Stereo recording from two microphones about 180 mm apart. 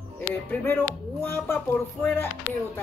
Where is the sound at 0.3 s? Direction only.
10° left (ahead or behind).